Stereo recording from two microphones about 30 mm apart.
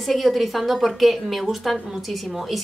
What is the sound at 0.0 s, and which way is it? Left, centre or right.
Speech, centre.